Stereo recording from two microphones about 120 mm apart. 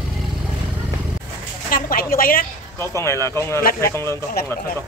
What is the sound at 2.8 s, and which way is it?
Speech, 25° left (ahead or behind).